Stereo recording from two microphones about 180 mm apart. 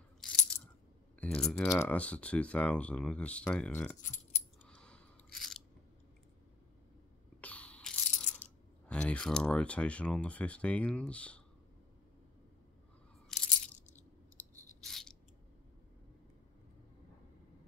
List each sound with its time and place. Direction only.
0.2 s coin: 5° left (ahead or behind)
1.2 s speech: 5° left (ahead or behind)
4.0 s coin: 45° left (ahead or behind)
4.6 s chewing: 5° left (ahead or behind)
7.4 s a sound: 5° left (ahead or behind)
8.4 s speech: 5° left (ahead or behind)
13.5 s coin: 45° left (ahead or behind)
14.8 s a sound: centre (ahead or behind)